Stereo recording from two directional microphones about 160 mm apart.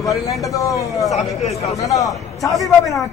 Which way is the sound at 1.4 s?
40° left (ahead or behind).